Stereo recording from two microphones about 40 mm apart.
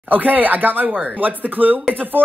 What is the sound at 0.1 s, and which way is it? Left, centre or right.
Speech, right.